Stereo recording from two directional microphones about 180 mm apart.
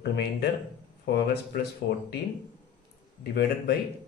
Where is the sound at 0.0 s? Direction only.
65° left (ahead or behind).